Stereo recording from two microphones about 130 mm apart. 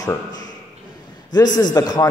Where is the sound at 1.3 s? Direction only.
30° left (ahead or behind).